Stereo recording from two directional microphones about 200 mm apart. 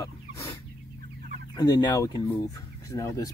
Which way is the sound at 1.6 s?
20° left (ahead or behind).